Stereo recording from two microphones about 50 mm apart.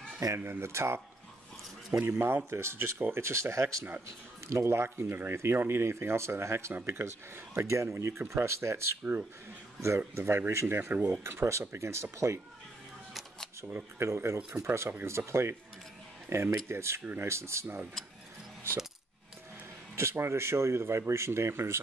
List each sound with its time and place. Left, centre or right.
0.4 s speech: right
2.0 s speech: right
4.5 s speech: right
9.9 s speech: right
10.8 s speech: right
11.2 s speech: right
13.9 s speech: right
20.0 s speech: right